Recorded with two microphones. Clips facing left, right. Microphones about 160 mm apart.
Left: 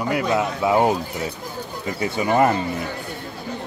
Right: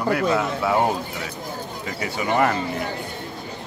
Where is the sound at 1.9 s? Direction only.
25° left (ahead or behind).